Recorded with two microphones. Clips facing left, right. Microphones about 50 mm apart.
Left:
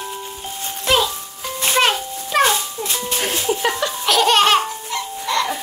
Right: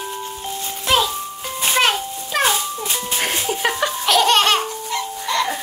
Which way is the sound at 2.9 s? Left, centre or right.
Centre.